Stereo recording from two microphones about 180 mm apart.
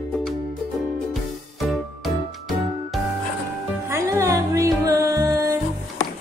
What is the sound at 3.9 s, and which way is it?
Music, 15° right (ahead or behind).